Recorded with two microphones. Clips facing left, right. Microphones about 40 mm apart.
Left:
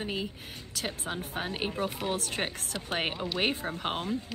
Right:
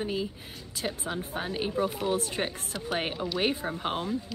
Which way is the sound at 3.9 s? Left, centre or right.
Left.